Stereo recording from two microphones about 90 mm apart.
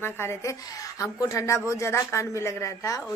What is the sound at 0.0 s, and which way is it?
A woman's voice, 30° left (ahead or behind).